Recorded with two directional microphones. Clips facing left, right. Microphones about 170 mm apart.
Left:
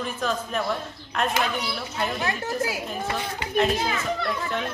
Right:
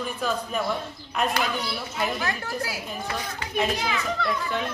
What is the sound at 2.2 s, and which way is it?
Speech, 20° left (ahead or behind).